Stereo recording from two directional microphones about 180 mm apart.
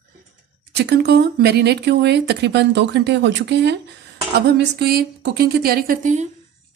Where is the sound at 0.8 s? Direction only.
70° right (ahead or behind); by 6.2 s 50° right (ahead or behind).